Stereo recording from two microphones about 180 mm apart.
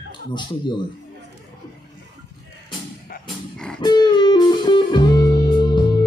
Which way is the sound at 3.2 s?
5° left (ahead or behind).